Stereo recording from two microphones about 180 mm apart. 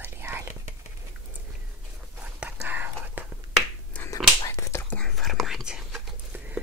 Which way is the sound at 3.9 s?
10° left (ahead or behind).